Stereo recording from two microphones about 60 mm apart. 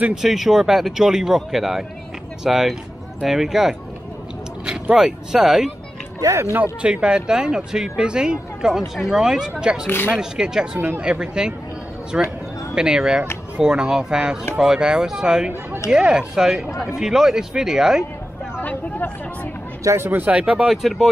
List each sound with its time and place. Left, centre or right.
0.1 s speech: centre
4.9 s speech: centre
6.2 s speech: right
6.8 s speech: centre
9.8 s speech: left
10.1 s speech: centre
18.6 s speech: left
20.0 s speech: right; by 20.8 s centre
20.8 s speech: centre